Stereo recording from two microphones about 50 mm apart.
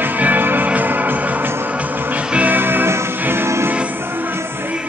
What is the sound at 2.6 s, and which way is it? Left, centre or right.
Music, right.